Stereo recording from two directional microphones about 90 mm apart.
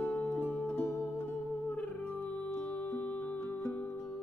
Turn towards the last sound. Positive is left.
turn(degrees=15)  # may be behind; listen again after turning